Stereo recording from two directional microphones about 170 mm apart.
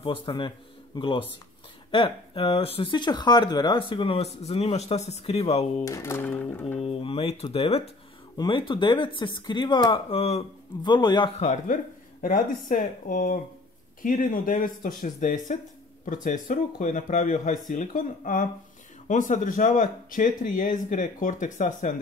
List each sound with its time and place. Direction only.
0.0 s speech: 30° left (ahead or behind)
5.9 s music: 15° left (ahead or behind)
6.8 s speech: 35° left (ahead or behind)
11.3 s speech: 45° left (ahead or behind)